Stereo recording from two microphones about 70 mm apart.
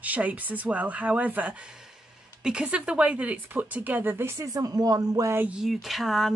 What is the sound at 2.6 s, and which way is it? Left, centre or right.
Speech, centre.